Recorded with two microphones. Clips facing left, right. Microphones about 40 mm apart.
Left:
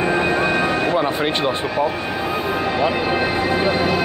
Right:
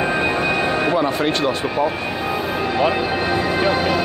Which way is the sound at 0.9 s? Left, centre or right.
Centre.